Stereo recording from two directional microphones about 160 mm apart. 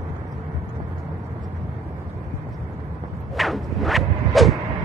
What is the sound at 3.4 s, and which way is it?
Whip, centre (ahead or behind).